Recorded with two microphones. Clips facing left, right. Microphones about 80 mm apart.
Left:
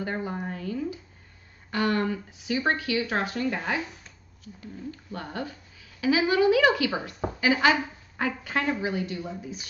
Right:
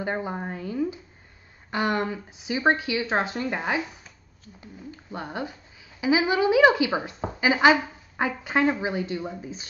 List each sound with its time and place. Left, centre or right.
0.0 s a woman's voice: right